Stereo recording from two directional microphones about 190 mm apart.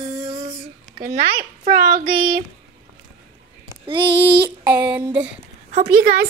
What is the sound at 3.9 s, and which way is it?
Child singing, 25° right (ahead or behind).